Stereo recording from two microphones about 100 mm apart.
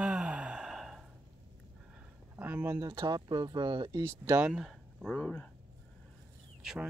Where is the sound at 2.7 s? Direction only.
35° right (ahead or behind).